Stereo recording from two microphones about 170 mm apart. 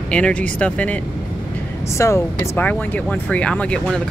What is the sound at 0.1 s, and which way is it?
Speech, 5° left (ahead or behind).